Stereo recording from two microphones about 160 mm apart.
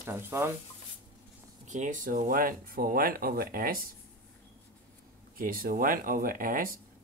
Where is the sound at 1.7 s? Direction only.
50° right (ahead or behind).